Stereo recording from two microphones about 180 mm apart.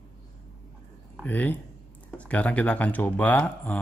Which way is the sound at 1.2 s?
10° left (ahead or behind).